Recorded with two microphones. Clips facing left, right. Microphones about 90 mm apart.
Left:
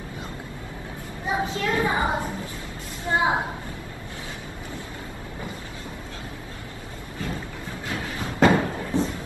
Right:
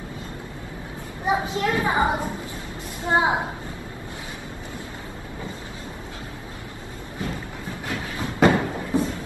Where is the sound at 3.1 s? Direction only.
25° right (ahead or behind).